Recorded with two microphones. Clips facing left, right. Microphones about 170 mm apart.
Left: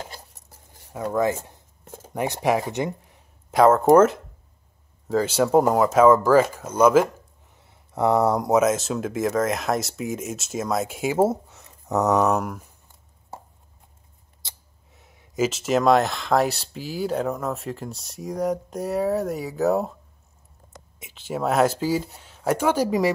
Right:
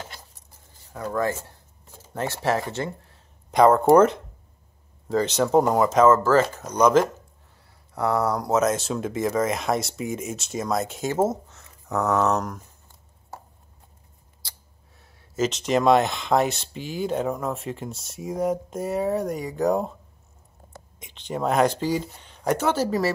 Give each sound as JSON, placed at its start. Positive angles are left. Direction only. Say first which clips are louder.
{"t": 0.9, "sound": "speech", "louder": "left 3 dB", "side_deg": 20}
{"t": 3.5, "sound": "speech", "louder": "left 1 dB", "side_deg": 0}
{"t": 7.9, "sound": "speech", "louder": "left 4 dB", "side_deg": 25}
{"t": 8.5, "sound": "speech", "louder": "left 2 dB", "side_deg": 0}
{"t": 15.0, "sound": "speech", "louder": "left 1 dB", "side_deg": 15}
{"t": 21.0, "sound": "speech", "louder": "left 1 dB", "side_deg": 5}